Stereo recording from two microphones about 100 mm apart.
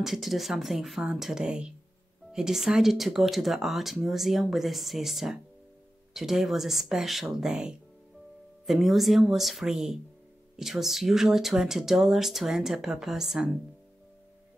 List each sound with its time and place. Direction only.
0.0 s speech: centre (ahead or behind)